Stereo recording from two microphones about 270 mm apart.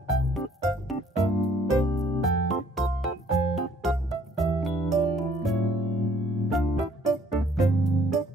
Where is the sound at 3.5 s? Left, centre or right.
Centre.